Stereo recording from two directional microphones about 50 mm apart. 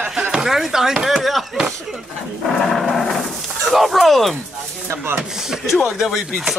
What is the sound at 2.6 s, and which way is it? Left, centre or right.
Cattle, centre.